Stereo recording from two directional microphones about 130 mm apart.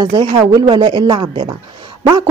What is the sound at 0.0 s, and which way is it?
A woman's voice, 35° right (ahead or behind).